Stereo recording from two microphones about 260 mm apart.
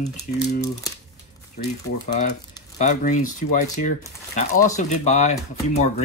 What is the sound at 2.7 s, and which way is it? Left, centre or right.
Speech, left.